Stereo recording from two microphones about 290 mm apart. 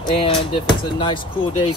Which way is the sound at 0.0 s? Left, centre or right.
Centre.